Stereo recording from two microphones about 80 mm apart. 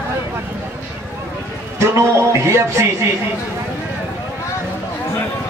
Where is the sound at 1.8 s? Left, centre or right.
Right.